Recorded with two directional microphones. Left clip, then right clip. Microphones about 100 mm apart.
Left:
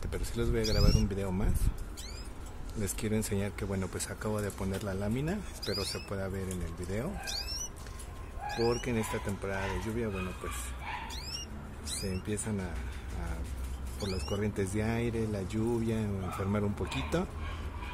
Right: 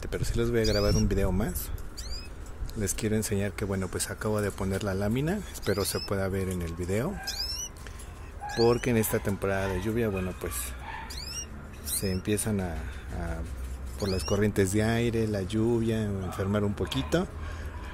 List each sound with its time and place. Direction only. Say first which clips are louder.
0.0 s speech: right 5 dB; 25° right (ahead or behind)
0.8 s speech: right 6 dB; 45° right (ahead or behind)
2.8 s speech: right 5 dB; 25° right (ahead or behind)
5.6 s speech: right 7 dB; 55° right (ahead or behind)
8.5 s speech: right 7 dB; 50° right (ahead or behind)
12.0 s speech: right 8 dB; 70° right (ahead or behind)
12.5 s speech: right 6 dB; 50° right (ahead or behind)
13.9 s speech: right 7 dB; 45° right (ahead or behind); by 17.3 s 25° right (ahead or behind)